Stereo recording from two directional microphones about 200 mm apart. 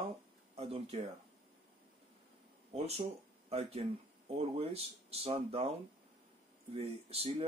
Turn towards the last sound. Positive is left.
turn(degrees=-30)  # may be behind; listen again after turning